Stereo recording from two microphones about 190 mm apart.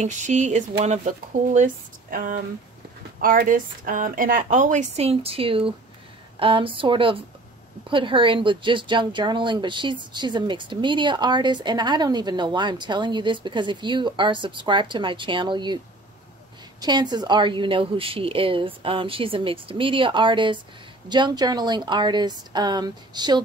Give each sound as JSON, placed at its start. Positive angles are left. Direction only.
{"t": 0.0, "sound": "speech", "side_deg": -40}
{"t": 16.8, "sound": "speech", "side_deg": -20}